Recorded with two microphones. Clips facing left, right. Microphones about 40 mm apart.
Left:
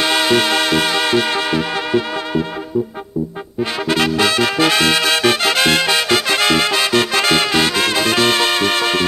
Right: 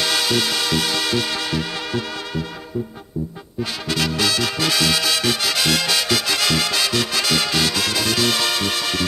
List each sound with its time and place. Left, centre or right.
0.0 s music: left
3.8 s music: left